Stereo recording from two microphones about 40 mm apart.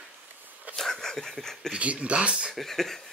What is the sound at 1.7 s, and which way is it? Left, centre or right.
Speech, right.